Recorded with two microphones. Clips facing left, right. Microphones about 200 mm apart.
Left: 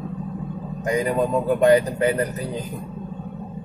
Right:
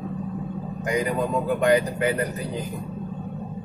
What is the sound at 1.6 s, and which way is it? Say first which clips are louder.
Speech: left 4 dB; 30° left (ahead or behind).